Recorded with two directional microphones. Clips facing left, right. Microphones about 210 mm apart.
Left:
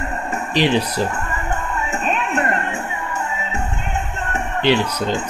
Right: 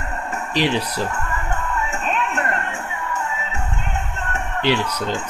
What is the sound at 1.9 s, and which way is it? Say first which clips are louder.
Music: left 2 dB; 15° left (ahead or behind).